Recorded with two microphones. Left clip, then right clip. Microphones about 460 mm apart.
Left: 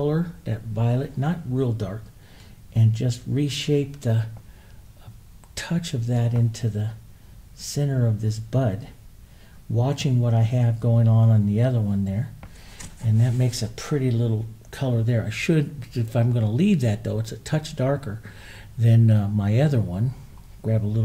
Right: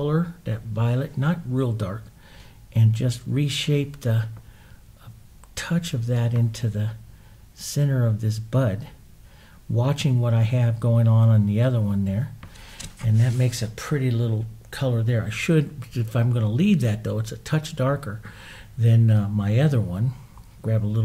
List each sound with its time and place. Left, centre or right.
0.0 s speech: right
5.5 s speech: right
9.8 s speech: right
13.2 s speech: right